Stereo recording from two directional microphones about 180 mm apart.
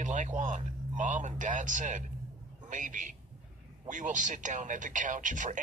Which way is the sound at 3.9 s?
45° right (ahead or behind).